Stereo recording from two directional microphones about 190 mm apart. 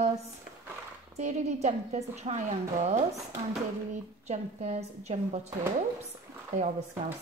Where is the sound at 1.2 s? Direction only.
35° right (ahead or behind).